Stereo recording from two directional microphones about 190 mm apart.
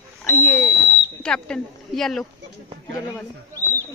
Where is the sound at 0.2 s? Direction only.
10° left (ahead or behind).